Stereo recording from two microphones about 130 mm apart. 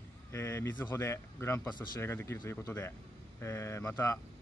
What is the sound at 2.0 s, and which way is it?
Speech, 20° left (ahead or behind).